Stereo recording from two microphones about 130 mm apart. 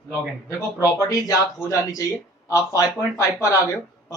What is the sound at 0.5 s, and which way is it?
Speech, 25° left (ahead or behind).